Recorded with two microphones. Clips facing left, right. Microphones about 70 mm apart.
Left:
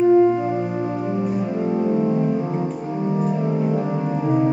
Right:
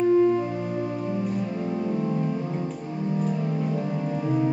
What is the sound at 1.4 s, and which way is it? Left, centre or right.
Music, left.